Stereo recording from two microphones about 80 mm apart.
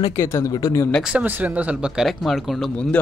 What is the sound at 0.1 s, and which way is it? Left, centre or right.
Speech, left.